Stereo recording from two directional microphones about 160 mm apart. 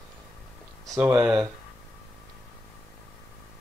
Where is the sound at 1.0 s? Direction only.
10° right (ahead or behind).